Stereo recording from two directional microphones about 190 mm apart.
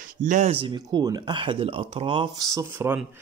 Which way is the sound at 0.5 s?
25° right (ahead or behind).